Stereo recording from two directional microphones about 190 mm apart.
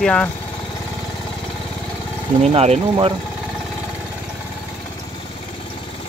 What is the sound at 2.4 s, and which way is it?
Speech, 35° right (ahead or behind).